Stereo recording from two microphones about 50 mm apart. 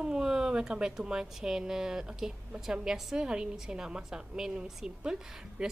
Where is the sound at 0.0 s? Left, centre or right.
Centre.